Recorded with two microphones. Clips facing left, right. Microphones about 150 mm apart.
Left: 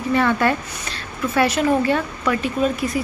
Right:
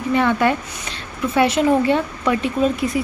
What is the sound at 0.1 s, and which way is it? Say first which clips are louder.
A woman's voice: right 1 dB; 15° right (ahead or behind).